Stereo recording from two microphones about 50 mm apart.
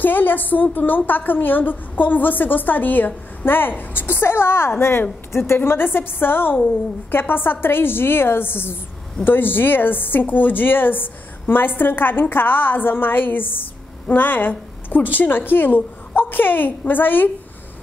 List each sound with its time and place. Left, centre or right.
0.0 s a woman's voice: left